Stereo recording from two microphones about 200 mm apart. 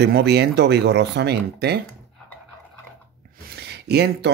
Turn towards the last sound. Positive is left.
turn(degrees=-55)  # may be behind; listen again after turning